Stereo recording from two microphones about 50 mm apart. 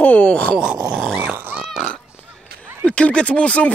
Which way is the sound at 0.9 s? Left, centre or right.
Centre.